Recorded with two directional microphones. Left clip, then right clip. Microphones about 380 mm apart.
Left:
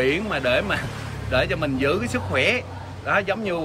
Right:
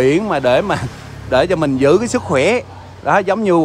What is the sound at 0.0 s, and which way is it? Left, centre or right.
A man's voice, centre.